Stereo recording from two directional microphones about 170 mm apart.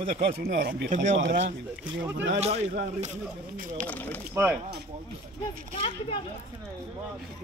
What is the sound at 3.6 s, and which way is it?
Speech, 50° right (ahead or behind).